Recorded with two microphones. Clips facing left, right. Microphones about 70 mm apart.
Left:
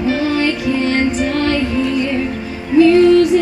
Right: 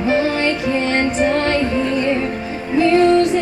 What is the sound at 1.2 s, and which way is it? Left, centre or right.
Music, right.